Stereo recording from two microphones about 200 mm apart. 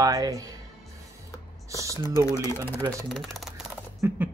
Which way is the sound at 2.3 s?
20° right (ahead or behind).